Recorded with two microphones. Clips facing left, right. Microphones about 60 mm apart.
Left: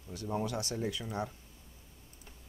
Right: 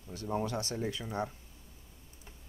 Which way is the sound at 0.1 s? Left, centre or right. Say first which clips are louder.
Right 1 dB; right.